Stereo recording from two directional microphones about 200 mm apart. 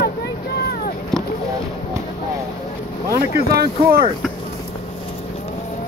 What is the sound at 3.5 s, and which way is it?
Speech, 50° right (ahead or behind).